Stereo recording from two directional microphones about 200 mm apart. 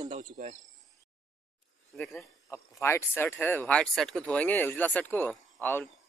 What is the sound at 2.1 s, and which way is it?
Speech, 15° left (ahead or behind).